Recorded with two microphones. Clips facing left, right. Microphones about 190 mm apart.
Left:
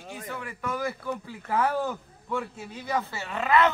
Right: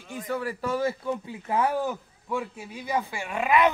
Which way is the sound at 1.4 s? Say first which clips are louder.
Right 1 dB; 15° right (ahead or behind).